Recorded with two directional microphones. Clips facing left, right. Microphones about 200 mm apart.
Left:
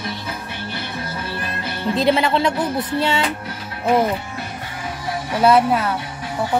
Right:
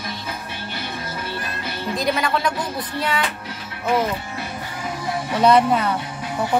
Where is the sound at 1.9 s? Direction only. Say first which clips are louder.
Left 5 dB; 25° left (ahead or behind).